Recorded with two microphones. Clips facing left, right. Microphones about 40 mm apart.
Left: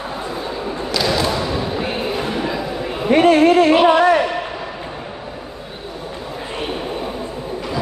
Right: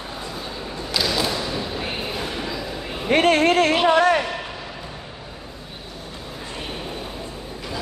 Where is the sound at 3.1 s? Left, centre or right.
Right.